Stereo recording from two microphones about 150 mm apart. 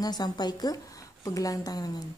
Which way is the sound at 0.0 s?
25° left (ahead or behind).